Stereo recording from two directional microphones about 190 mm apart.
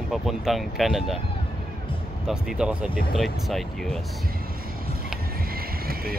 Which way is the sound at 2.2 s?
5° right (ahead or behind).